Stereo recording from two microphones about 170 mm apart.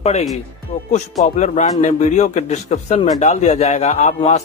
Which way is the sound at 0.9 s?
40° left (ahead or behind).